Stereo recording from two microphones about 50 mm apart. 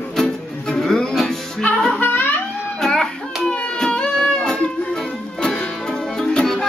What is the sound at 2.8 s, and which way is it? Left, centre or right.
Music, centre.